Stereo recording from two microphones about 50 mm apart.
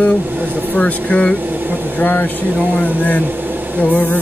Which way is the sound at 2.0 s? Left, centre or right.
Left.